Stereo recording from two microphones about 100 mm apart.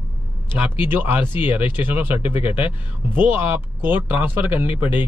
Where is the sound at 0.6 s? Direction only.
15° right (ahead or behind).